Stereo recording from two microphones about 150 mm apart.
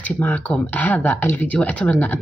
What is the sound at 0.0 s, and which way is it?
Speech, 10° left (ahead or behind).